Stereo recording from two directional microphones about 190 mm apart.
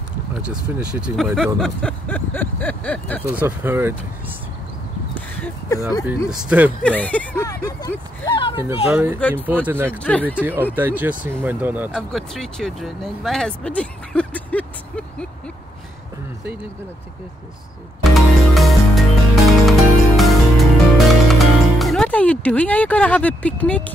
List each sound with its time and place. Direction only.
0.4 s speech: 5° right (ahead or behind)
3.3 s speech: 10° right (ahead or behind)
5.3 s a sound: 15° left (ahead or behind)
6.2 s speech: 10° right (ahead or behind)
6.8 s speech: 5° left (ahead or behind)
8.3 s a sound: 25° left (ahead or behind)
8.8 s speech: 10° right (ahead or behind)
9.9 s speech: 5° left (ahead or behind)
10.4 s speech: 10° right (ahead or behind)
11.9 s speech: centre (ahead or behind)
18.0 s music: centre (ahead or behind)